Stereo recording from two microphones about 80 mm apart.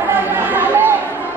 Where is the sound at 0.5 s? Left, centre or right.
Right.